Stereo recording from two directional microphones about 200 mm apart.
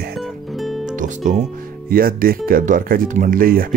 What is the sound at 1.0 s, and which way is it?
Speech, 40° right (ahead or behind).